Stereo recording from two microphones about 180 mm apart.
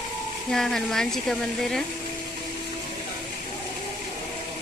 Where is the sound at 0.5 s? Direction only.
Centre (ahead or behind).